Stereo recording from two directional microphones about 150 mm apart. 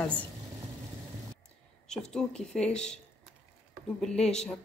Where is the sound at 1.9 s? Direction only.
5° left (ahead or behind).